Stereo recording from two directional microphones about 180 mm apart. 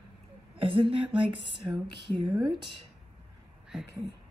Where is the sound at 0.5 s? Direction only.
30° right (ahead or behind).